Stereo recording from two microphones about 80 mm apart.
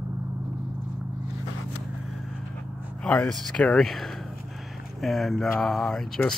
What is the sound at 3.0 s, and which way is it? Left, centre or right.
Speech, centre.